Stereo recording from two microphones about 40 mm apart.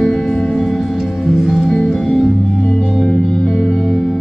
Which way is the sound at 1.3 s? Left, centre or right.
Centre.